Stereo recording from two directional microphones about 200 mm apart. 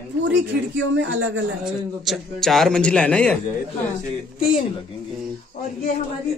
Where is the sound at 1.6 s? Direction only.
Centre (ahead or behind).